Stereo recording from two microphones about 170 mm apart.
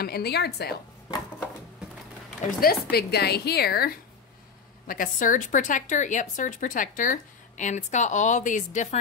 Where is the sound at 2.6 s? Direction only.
60° left (ahead or behind).